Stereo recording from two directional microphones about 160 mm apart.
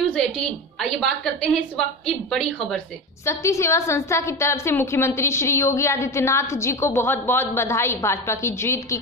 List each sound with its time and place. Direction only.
0.1 s a woman's voice: 5° left (ahead or behind)
3.3 s a woman's voice: 20° left (ahead or behind)